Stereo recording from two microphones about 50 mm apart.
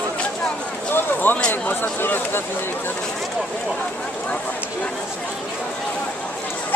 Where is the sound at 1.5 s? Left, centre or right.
Left.